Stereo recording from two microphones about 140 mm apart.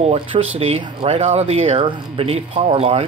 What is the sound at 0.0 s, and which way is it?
Speech, 45° right (ahead or behind).